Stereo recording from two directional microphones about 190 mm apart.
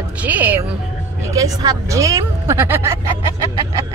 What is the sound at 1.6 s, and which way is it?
Speech, 20° right (ahead or behind).